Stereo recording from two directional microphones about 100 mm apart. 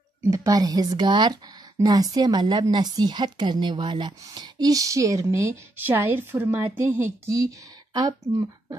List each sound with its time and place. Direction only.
0.3 s speech: 35° right (ahead or behind)
7.9 s speech: 40° right (ahead or behind)